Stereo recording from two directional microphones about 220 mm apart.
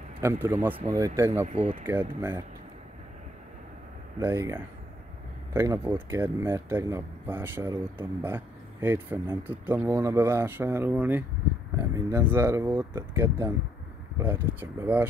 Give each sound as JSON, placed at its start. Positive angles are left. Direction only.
{"t": 0.2, "sound": "speech", "side_deg": -10}
{"t": 1.4, "sound": "speech", "side_deg": -30}
{"t": 1.9, "sound": "speech", "side_deg": -10}
{"t": 4.2, "sound": "speech", "side_deg": -10}